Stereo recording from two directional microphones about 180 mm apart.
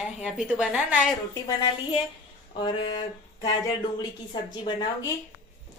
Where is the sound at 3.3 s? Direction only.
20° left (ahead or behind).